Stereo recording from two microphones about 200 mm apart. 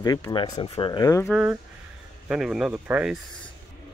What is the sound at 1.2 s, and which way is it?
Speech, 5° right (ahead or behind).